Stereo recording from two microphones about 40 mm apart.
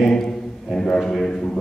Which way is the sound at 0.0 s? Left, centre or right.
Centre.